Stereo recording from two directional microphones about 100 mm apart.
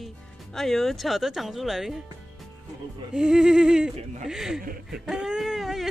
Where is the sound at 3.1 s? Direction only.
5° right (ahead or behind).